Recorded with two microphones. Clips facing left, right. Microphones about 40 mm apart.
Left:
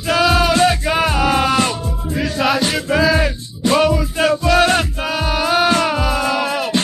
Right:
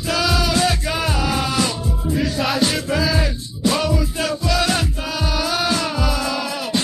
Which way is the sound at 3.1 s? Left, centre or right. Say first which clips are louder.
Left 5 dB; left.